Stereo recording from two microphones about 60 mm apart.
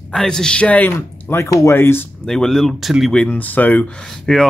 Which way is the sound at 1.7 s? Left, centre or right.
Left.